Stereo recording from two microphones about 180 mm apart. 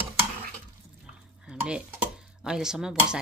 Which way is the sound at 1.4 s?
5° right (ahead or behind).